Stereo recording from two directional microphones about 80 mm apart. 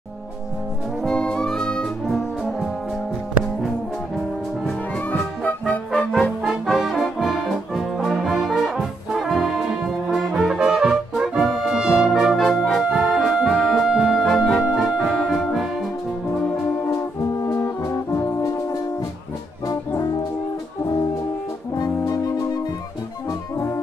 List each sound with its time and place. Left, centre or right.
1.0 s music: centre
4.6 s music: centre
6.6 s brass instrument: centre
14.6 s organ: centre
15.1 s music: centre
16.9 s brass instrument: left